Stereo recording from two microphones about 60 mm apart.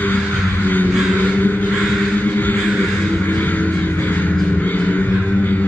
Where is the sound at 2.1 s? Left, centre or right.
Left.